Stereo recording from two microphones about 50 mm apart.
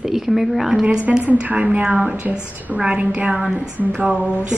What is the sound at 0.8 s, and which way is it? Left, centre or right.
A woman's voice, right.